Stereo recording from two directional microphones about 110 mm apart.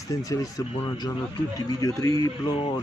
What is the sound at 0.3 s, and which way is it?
Speech, 30° left (ahead or behind).